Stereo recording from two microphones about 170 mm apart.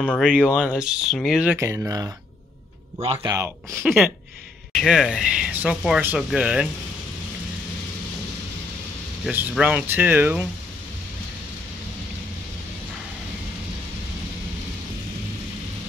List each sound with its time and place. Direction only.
0.2 s speech: 5° right (ahead or behind)
1.6 s speech: 20° right (ahead or behind)
3.2 s speech: 15° right (ahead or behind)
4.7 s speech: centre (ahead or behind)
9.2 s speech: 10° right (ahead or behind)